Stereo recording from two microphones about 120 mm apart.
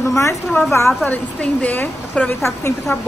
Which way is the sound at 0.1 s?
25° left (ahead or behind).